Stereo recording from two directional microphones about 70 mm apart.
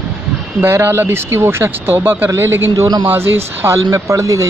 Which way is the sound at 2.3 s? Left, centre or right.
Right.